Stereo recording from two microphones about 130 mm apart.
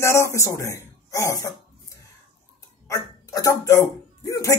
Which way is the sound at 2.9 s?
25° left (ahead or behind).